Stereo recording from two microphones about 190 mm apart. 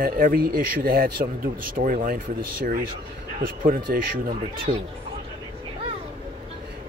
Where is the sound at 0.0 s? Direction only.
50° right (ahead or behind).